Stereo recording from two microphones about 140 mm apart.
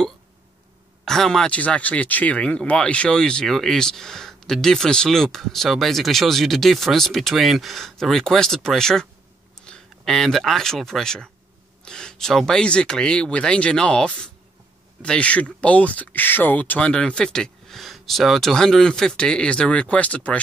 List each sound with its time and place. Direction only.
1.0 s speech: 5° left (ahead or behind)